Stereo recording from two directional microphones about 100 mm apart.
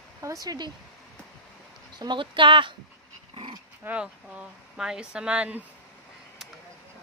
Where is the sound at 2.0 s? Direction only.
55° right (ahead or behind).